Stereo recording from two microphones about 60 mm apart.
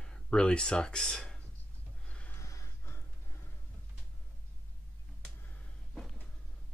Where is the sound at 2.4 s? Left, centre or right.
Left.